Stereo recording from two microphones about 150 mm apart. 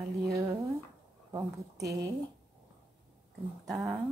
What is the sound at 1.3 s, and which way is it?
Speech, 20° right (ahead or behind).